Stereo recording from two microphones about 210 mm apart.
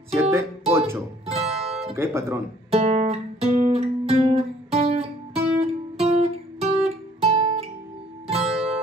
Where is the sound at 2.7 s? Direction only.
30° right (ahead or behind).